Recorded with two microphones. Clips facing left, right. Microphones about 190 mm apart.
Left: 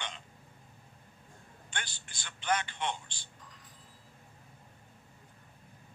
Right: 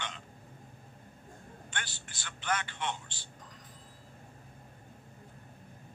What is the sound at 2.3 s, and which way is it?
Speech, 25° left (ahead or behind).